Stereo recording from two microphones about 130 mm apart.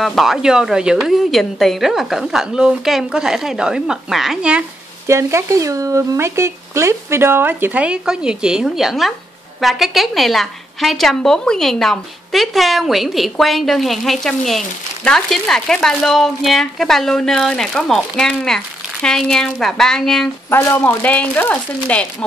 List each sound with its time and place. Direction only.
0.0 s speech: centre (ahead or behind)
5.0 s speech: 20° right (ahead or behind); by 20.2 s 5° left (ahead or behind)
20.4 s speech: 15° left (ahead or behind)